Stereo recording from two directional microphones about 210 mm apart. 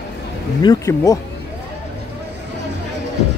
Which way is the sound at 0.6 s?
15° left (ahead or behind).